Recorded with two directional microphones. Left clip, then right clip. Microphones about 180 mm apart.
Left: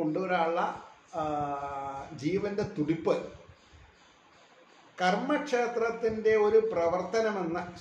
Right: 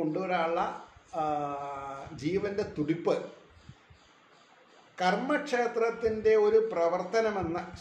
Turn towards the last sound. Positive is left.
turn(degrees=0)  # may be behind; listen again after turning